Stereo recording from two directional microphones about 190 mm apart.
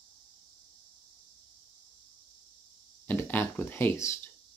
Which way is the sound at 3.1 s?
10° left (ahead or behind).